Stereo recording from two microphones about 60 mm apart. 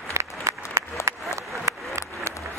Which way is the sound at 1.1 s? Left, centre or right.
Right.